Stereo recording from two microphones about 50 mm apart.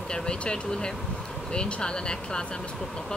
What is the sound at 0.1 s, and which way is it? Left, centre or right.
Speech, centre.